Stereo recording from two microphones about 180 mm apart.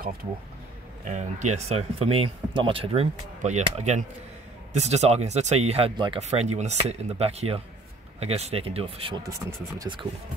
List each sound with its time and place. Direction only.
1.0 s speech: 40° right (ahead or behind)
9.3 s speech: 20° right (ahead or behind)